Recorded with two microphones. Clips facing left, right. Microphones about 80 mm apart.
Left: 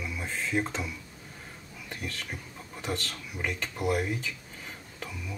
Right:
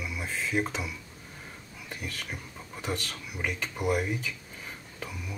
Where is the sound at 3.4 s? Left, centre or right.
Centre.